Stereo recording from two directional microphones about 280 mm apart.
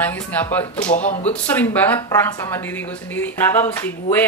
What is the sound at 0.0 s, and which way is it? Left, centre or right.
Speech, centre.